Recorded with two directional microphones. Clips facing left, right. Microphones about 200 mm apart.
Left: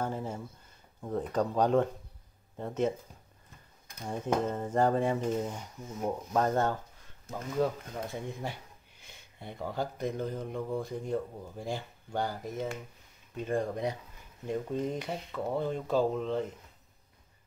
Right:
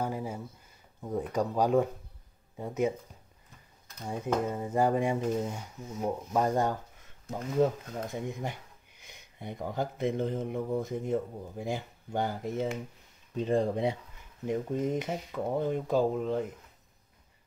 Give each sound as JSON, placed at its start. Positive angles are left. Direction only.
{"t": 0.0, "sound": "a sound", "side_deg": -10}
{"t": 1.0, "sound": "speech", "side_deg": -10}
{"t": 4.0, "sound": "speech", "side_deg": -10}